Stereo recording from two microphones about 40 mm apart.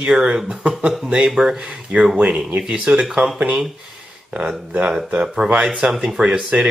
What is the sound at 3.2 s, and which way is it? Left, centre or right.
Speech, right.